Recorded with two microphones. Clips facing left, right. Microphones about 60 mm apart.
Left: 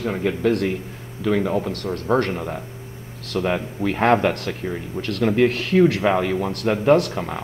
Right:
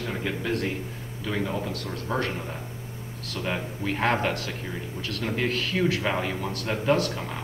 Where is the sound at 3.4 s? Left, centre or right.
Left.